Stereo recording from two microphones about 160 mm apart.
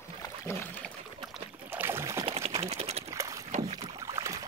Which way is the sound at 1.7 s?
15° right (ahead or behind).